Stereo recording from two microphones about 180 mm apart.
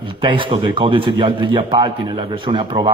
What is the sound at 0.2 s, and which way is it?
A man's voice, 30° right (ahead or behind).